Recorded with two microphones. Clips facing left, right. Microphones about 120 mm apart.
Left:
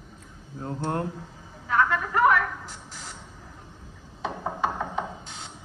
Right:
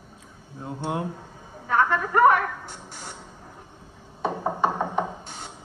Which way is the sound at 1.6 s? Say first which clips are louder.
Right 2 dB; 45° right (ahead or behind).